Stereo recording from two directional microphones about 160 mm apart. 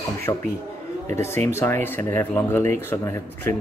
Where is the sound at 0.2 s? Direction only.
15° left (ahead or behind).